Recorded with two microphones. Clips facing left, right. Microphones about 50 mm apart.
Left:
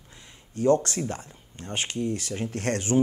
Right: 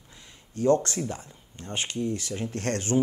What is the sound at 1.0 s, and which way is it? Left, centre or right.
Speech, left.